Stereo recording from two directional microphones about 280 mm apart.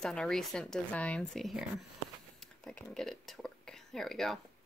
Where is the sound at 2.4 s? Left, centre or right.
Centre.